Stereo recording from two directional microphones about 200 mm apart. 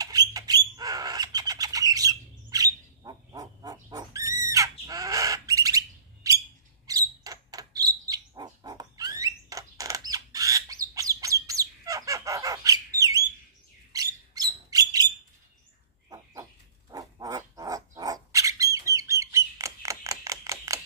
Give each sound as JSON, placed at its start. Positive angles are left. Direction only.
{"t": 0.0, "sound": "bird", "side_deg": -20}
{"t": 6.9, "sound": "dog", "side_deg": -20}
{"t": 9.2, "sound": "bird", "side_deg": -15}
{"t": 13.9, "sound": "a sound", "side_deg": -20}
{"t": 16.9, "sound": "squawk", "side_deg": -15}